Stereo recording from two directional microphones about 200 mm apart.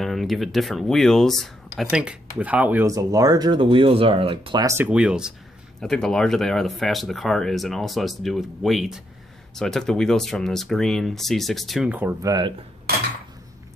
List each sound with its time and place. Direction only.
0.0 s speech: centre (ahead or behind); by 12.5 s 20° right (ahead or behind)